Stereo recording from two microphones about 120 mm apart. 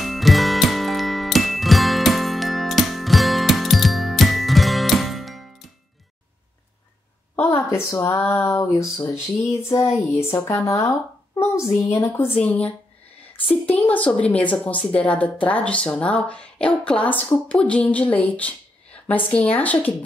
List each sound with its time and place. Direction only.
0.0 s music: centre (ahead or behind)
7.3 s a sound: 20° left (ahead or behind)
8.2 s a woman's voice: 15° left (ahead or behind)
12.4 s speech: 10° left (ahead or behind)